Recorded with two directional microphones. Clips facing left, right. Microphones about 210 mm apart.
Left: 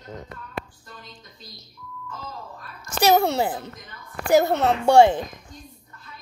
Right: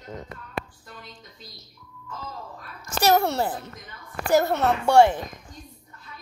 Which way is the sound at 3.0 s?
15° left (ahead or behind).